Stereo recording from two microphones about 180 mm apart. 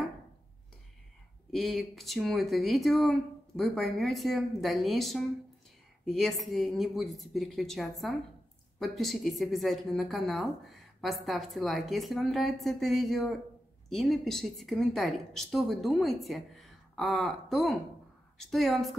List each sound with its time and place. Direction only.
1.5 s speech: centre (ahead or behind)